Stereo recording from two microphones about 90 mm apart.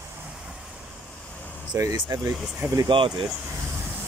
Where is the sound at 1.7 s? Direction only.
35° right (ahead or behind).